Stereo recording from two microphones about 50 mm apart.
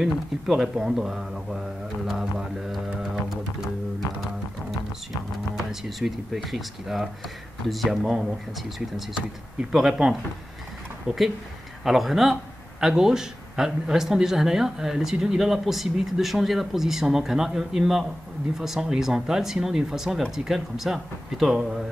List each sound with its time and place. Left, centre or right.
0.0 s speech: centre
5.7 s speech: centre
7.9 s speech: centre
9.1 s speech: centre